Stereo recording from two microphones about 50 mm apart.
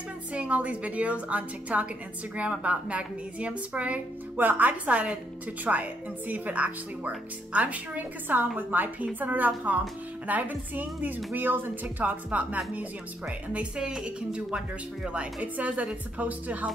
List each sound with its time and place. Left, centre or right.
0.3 s a woman's voice: right
4.4 s speech: right
12.0 s a woman's voice: right
15.4 s a woman's voice: right